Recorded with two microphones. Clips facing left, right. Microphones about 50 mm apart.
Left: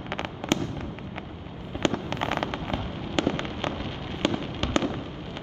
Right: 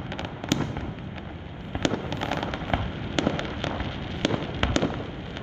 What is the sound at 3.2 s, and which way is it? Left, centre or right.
Fireworks, centre.